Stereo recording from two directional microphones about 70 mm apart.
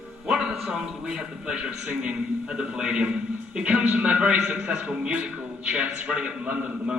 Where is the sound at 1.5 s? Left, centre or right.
Centre.